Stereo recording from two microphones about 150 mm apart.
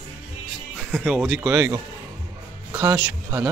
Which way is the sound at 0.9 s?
Centre (ahead or behind).